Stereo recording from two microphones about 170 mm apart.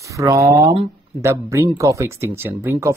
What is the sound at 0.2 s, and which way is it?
Speech, 20° right (ahead or behind).